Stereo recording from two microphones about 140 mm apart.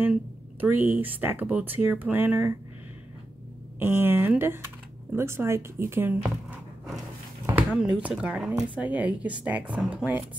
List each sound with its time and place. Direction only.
0.0 s speech: 15° right (ahead or behind)
3.8 s speech: 15° right (ahead or behind)
7.4 s a sound: 10° right (ahead or behind)
8.0 s speech: 10° right (ahead or behind)